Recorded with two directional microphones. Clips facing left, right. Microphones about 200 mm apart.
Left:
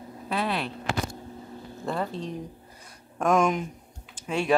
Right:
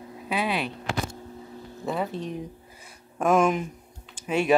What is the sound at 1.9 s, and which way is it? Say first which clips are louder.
Speech: right 1 dB; 5° right (ahead or behind).